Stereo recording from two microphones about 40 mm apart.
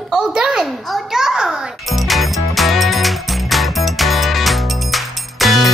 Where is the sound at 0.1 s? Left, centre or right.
Centre.